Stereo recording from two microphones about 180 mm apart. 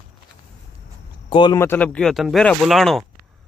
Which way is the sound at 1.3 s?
25° left (ahead or behind).